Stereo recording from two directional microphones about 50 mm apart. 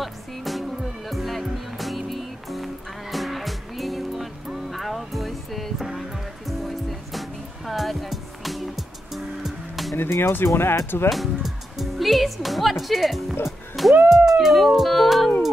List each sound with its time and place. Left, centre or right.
0.0 s music: centre
9.9 s speech: left
11.1 s speech: centre
14.0 s music: centre